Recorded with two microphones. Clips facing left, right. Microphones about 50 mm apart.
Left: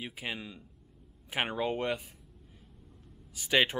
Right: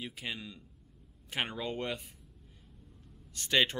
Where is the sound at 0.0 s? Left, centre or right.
Centre.